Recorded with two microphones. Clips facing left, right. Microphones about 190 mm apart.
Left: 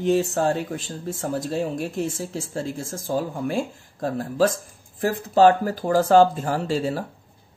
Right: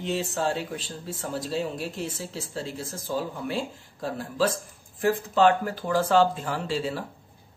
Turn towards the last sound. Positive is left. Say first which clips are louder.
# left 5 dB
turn(degrees=45)  # may be behind; listen again after turning